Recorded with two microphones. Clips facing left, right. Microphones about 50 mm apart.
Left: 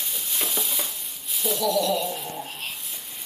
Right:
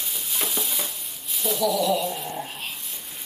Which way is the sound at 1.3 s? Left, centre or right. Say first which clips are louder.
Even; centre.